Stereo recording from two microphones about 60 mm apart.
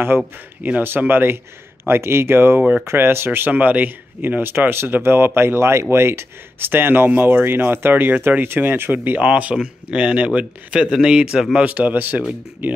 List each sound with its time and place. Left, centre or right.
0.6 s a man's voice: right
12.2 s a man's voice: centre